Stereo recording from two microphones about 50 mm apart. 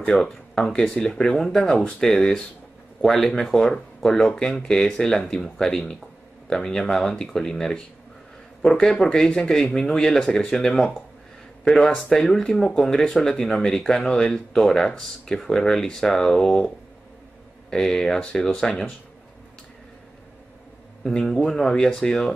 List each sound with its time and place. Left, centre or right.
0.1 s speech: centre
11.9 s speech: centre
17.6 s speech: centre
21.0 s speech: centre